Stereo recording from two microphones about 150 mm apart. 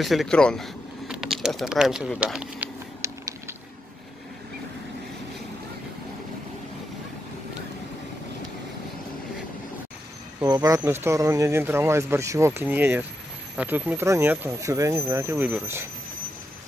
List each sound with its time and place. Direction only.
0.0 s speech: centre (ahead or behind)
3.0 s a sound: 20° right (ahead or behind)
10.4 s speech: 25° right (ahead or behind)